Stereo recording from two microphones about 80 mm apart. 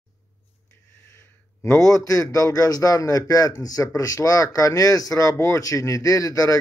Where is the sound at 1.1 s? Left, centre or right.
Left.